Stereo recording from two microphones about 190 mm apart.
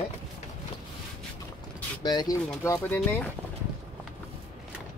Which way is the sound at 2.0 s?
20° left (ahead or behind).